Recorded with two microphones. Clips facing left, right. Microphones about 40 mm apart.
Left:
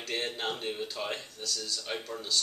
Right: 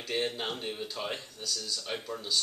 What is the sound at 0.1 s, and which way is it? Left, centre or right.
Speech, centre.